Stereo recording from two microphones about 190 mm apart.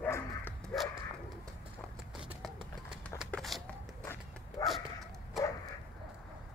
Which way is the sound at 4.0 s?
15° left (ahead or behind).